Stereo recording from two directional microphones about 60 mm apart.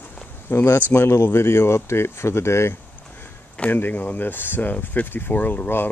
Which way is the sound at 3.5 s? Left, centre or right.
Left.